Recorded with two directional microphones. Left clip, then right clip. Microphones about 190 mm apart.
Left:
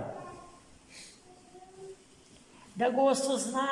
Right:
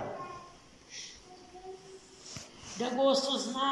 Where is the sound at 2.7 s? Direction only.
55° left (ahead or behind).